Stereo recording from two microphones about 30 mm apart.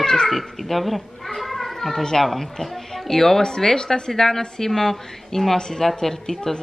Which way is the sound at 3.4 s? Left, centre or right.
Left.